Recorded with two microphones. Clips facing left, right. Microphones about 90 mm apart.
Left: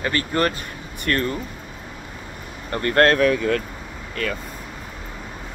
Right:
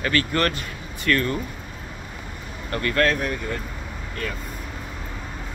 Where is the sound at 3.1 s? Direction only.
90° left.